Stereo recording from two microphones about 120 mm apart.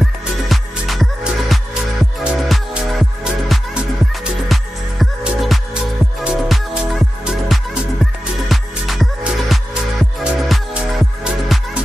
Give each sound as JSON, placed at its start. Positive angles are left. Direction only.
{"t": 0.0, "sound": "music", "side_deg": 0}